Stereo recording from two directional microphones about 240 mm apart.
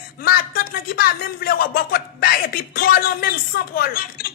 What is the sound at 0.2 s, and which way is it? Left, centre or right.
A woman's voice, left.